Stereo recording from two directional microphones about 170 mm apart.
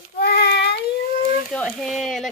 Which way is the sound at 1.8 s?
Centre (ahead or behind).